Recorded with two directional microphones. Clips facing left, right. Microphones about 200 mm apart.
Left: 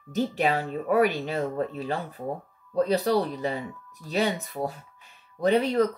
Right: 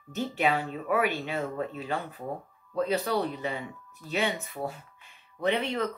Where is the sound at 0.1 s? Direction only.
40° left (ahead or behind).